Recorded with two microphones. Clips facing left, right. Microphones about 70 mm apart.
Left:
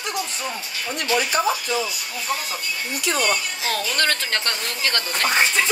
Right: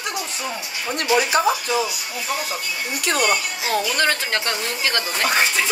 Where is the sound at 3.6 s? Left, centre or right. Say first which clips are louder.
Right 3 dB; centre.